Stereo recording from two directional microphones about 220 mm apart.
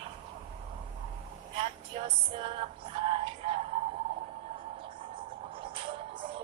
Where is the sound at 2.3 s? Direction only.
25° right (ahead or behind).